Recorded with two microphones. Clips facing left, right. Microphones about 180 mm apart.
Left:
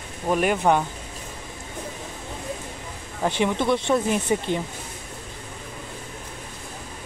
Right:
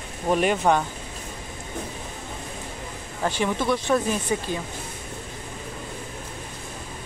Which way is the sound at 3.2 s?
20° left (ahead or behind).